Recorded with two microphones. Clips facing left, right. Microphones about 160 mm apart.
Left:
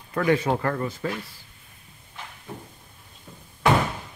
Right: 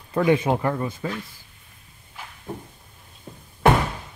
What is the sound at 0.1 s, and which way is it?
Speech, 20° right (ahead or behind).